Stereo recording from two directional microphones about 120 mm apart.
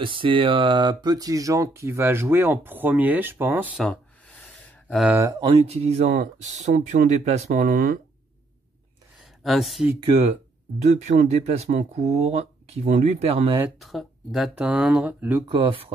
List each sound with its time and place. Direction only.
0.0 s speech: 45° right (ahead or behind); by 3.8 s 15° right (ahead or behind)
5.4 s speech: 60° right (ahead or behind)
9.2 s speech: centre (ahead or behind)
9.9 s speech: 50° right (ahead or behind)
10.8 s speech: 70° right (ahead or behind)
13.7 s speech: centre (ahead or behind)
15.4 s speech: 40° right (ahead or behind)